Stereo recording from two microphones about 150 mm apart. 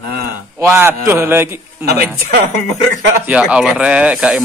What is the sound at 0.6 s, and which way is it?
Speech, 15° right (ahead or behind).